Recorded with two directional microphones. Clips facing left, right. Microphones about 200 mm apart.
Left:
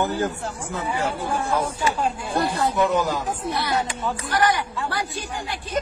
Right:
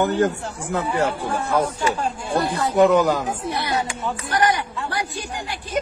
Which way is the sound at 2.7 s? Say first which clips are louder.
Right 11 dB; 50° right (ahead or behind).